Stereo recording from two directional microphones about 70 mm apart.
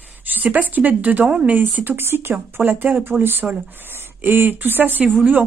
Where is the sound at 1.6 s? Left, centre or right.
Right.